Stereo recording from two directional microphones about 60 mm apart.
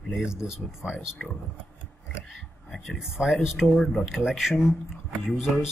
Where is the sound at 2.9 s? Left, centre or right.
Centre.